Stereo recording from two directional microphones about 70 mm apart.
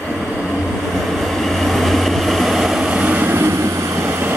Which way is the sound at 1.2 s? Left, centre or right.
Centre.